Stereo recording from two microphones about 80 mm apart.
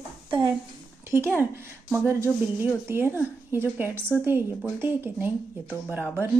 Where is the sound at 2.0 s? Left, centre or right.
Right.